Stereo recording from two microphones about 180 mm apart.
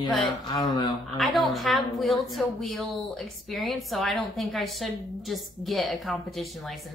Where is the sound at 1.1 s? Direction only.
Centre (ahead or behind).